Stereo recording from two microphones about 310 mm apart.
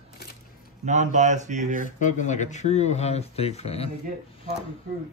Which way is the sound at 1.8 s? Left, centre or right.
Left.